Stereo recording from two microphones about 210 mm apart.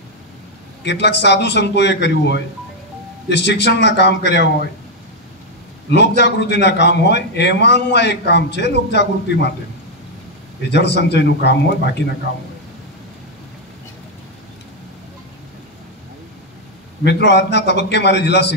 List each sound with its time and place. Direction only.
0.8 s a man's voice: 55° left (ahead or behind)
5.9 s a man's voice: 55° left (ahead or behind)
10.7 s a man's voice: 55° left (ahead or behind)
17.0 s a man's voice: 55° left (ahead or behind)